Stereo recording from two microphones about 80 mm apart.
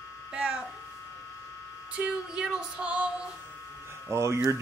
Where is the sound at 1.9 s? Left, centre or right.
Centre.